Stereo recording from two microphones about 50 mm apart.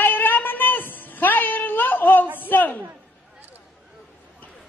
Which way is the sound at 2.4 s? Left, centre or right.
Left.